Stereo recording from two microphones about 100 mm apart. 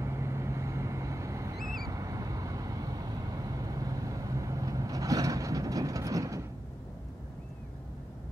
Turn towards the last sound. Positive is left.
turn(degrees=-35)  # may be behind; listen again after turning